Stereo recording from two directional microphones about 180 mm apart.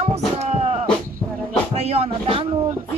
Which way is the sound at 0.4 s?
35° right (ahead or behind).